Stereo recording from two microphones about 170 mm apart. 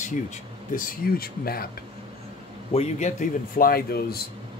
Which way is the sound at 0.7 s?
60° left (ahead or behind).